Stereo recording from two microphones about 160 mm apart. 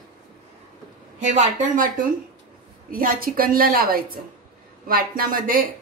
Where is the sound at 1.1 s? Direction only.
45° right (ahead or behind).